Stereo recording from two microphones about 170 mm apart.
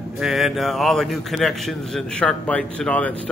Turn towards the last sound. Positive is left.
turn(degrees=5)  # may be behind; listen again after turning